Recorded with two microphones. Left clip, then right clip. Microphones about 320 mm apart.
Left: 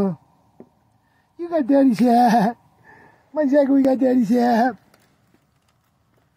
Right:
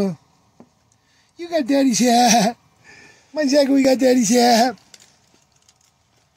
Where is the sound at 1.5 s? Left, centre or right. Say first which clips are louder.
Left 1 dB; centre.